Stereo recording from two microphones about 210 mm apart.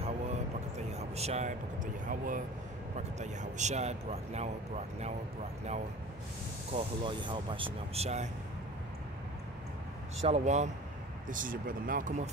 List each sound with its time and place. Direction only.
0.0 s vehicle: 30° right (ahead or behind)
2.0 s speech: 40° right (ahead or behind)
6.7 s speech: 25° right (ahead or behind)
10.2 s speech: 30° right (ahead or behind)